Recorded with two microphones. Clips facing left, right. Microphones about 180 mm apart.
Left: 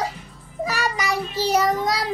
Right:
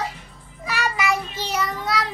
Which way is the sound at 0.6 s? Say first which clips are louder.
Right 1 dB; 40° left (ahead or behind).